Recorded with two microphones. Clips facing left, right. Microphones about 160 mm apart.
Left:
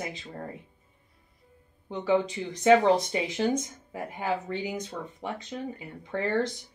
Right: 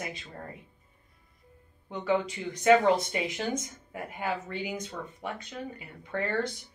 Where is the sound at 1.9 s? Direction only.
25° left (ahead or behind).